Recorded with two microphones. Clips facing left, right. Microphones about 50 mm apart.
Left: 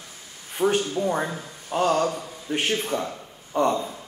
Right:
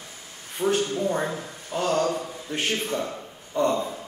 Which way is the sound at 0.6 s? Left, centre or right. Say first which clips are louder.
Left 1 dB; centre.